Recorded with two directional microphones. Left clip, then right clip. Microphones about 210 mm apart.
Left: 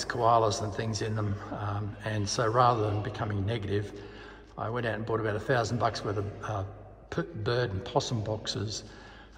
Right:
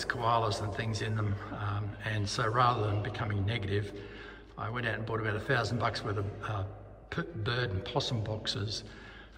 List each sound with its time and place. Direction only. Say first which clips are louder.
0.0 s a man's voice: left 5 dB; 20° left (ahead or behind)